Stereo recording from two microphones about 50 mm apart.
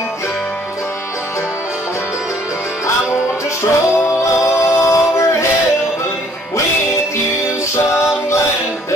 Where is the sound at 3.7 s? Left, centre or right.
Left.